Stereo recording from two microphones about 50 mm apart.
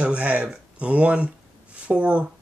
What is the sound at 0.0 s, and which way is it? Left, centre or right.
Speech, right.